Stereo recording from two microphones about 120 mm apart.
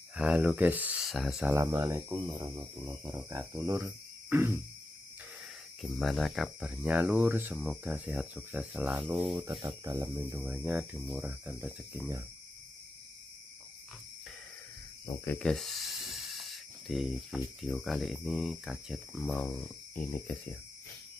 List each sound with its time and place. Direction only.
0.1 s speech: 5° right (ahead or behind)
1.0 s speech: centre (ahead or behind)
1.5 s speech: 25° right (ahead or behind)
2.0 s speech: 15° right (ahead or behind)
2.2 s speech: 30° right (ahead or behind)
5.8 s speech: centre (ahead or behind); by 7.5 s 20° right (ahead or behind)
7.5 s speech: 5° right (ahead or behind)
9.4 s speech: 40° right (ahead or behind); by 11.7 s 20° right (ahead or behind)
15.3 s speech: 5° left (ahead or behind)
19.2 s speech: 10° left (ahead or behind)